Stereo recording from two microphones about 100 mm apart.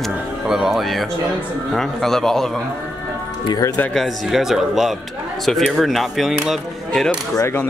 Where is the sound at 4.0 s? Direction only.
5° right (ahead or behind).